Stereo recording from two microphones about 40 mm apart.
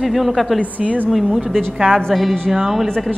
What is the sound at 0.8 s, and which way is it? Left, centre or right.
Music, centre.